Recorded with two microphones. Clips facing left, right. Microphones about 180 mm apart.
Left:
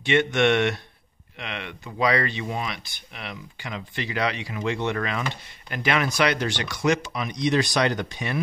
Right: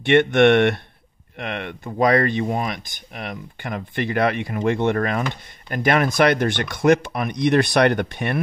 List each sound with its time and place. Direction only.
0.0 s speech: 60° right (ahead or behind)